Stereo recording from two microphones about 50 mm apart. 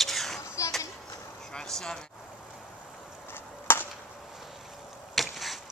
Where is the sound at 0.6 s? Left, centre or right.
Left.